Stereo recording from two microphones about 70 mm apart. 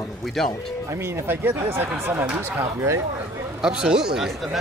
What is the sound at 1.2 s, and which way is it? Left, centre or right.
Speech, right.